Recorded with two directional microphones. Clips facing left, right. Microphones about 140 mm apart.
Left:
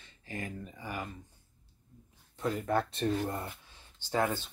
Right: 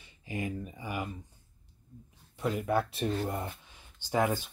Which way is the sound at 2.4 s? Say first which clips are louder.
Right 1 dB; 10° right (ahead or behind).